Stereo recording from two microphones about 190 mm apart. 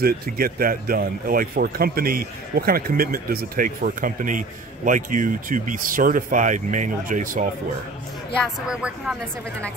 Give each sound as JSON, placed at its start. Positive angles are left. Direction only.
{"t": 0.0, "sound": "speech", "side_deg": -50}
{"t": 8.4, "sound": "speech", "side_deg": -5}